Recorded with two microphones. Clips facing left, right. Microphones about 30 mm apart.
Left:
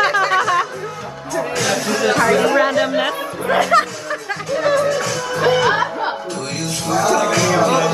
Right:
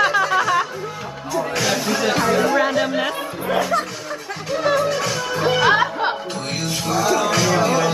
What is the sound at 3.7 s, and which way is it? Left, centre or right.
Speech, left.